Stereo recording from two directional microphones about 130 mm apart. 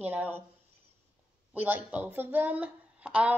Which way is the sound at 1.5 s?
15° right (ahead or behind).